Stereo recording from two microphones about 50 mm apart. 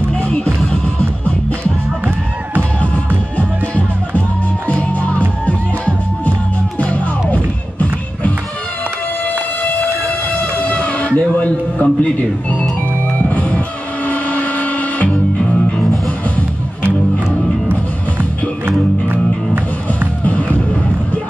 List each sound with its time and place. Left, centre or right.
0.2 s music: left
4.6 s music: left
6.8 s music: left
9.6 s train: left
10.5 s a sound: left
13.3 s music: left
15.4 s music: centre
18.7 s music: right